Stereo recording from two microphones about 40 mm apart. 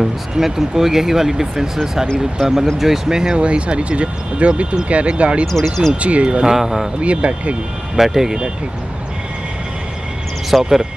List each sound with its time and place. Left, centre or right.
0.0 s speech: centre
3.3 s speech: right
5.5 s speech: centre
5.9 s speech: right
6.4 s speech: centre
7.0 s speech: right
7.9 s speech: centre
10.5 s speech: centre